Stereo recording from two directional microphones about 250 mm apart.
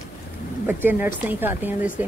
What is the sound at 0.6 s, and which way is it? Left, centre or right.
Speech, centre.